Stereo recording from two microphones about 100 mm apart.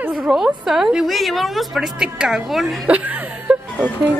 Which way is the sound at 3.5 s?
15° right (ahead or behind).